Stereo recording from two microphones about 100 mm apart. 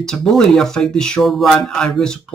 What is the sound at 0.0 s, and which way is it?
Speech, 5° left (ahead or behind).